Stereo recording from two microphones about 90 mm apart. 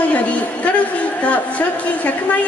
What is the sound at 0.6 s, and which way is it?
A woman's voice, 15° left (ahead or behind).